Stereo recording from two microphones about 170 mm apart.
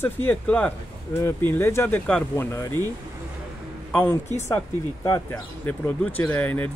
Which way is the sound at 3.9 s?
10° left (ahead or behind).